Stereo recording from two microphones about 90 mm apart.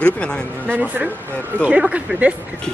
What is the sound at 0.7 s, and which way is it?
Speech, 15° right (ahead or behind).